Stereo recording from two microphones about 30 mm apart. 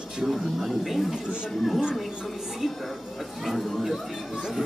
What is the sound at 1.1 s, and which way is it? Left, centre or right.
Speech, right.